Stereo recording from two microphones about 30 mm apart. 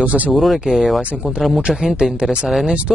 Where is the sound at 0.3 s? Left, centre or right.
Centre.